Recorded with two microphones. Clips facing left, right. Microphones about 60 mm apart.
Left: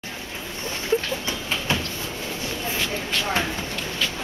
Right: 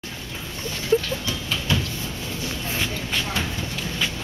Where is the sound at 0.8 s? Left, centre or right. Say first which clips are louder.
Right 2 dB; left.